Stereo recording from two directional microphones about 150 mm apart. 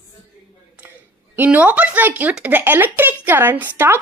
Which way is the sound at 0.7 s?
15° right (ahead or behind).